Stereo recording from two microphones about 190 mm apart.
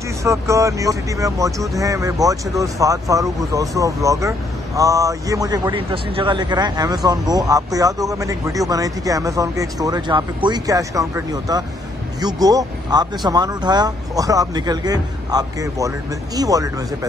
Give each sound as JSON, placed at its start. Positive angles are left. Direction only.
{"t": 0.2, "sound": "a man's voice", "side_deg": -15}